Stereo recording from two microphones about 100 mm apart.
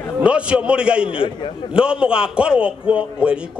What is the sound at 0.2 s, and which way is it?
Speech, 10° right (ahead or behind).